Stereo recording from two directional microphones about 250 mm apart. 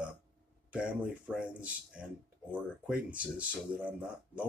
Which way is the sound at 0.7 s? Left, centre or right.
Centre.